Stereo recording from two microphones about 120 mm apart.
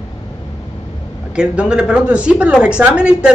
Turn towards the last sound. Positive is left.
turn(degrees=-10)  # may be behind; listen again after turning